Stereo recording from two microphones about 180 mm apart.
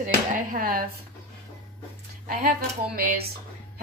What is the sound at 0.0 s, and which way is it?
Speech, 45° right (ahead or behind).